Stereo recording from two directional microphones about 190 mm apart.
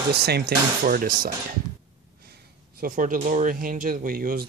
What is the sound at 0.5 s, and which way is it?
Speech, 55° right (ahead or behind).